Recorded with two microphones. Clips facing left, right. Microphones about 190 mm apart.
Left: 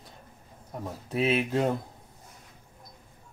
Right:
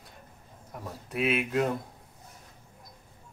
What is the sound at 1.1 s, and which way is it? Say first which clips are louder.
Speech: left 2 dB; 30° left (ahead or behind).